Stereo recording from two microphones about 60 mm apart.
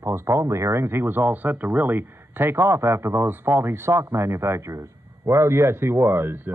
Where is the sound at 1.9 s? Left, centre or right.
Right.